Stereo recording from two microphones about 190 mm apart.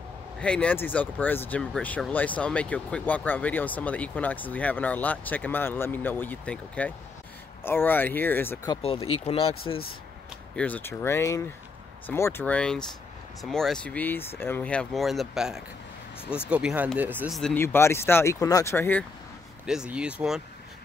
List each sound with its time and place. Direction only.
0.4 s speech: 5° left (ahead or behind)
8.6 s speech: 25° left (ahead or behind)
10.5 s speech: 5° left (ahead or behind); by 17.4 s 10° right (ahead or behind)
17.4 s speech: 5° left (ahead or behind)
19.6 s speech: 5° right (ahead or behind)